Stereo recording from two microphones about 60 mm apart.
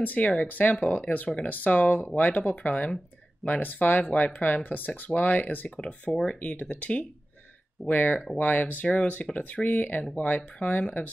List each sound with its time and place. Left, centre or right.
0.0 s speech: left